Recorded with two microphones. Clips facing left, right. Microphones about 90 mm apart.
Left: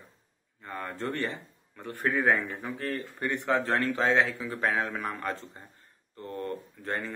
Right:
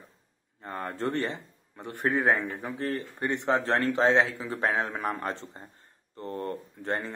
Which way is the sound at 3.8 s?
20° right (ahead or behind).